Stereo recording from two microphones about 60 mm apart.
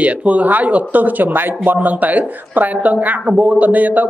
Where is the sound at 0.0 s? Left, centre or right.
Right.